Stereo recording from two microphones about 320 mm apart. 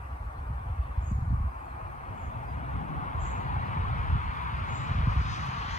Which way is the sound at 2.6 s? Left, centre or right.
Left.